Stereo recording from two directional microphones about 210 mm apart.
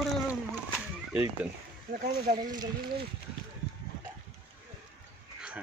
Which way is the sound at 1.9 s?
45° right (ahead or behind).